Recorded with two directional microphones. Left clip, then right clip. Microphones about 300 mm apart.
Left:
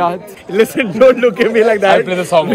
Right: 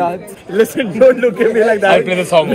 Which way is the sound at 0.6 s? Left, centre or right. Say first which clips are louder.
Left 1 dB; left.